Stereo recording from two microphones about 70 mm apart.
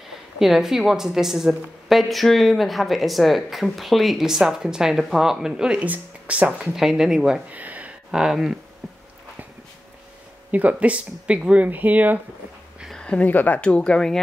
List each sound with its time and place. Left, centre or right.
0.4 s a woman's voice: centre
5.9 s speech: right
6.6 s speech: centre
7.5 s a sound: right
8.1 s a woman's voice: centre
10.5 s speech: right
12.9 s a sound: centre
13.2 s speech: left
13.6 s speech: centre